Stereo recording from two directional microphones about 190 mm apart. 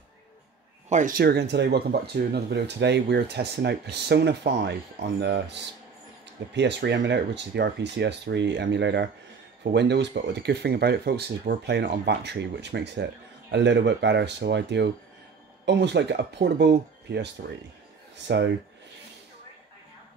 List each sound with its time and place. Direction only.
0.8 s speech: 40° right (ahead or behind); by 18.5 s 65° right (ahead or behind)